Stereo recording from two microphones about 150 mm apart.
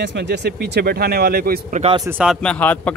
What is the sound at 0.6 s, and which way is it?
Speech, 90° right.